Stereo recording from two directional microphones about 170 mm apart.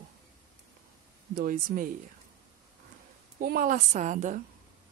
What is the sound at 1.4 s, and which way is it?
Speech, 55° right (ahead or behind).